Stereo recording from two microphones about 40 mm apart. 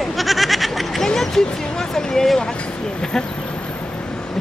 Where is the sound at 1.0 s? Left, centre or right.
Centre.